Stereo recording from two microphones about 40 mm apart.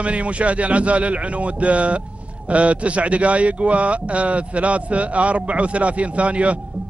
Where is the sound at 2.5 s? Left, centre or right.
Right.